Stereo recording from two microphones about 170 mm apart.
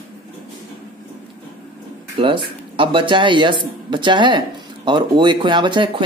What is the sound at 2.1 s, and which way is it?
A man's voice, 30° right (ahead or behind).